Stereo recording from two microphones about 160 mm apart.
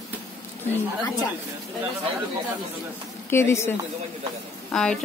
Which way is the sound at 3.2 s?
15° left (ahead or behind).